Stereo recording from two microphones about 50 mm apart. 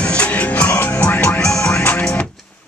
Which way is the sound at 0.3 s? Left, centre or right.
Left.